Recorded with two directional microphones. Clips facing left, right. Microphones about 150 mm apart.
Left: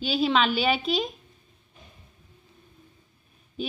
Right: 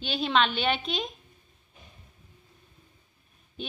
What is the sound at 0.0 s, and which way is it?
A woman's voice, centre (ahead or behind).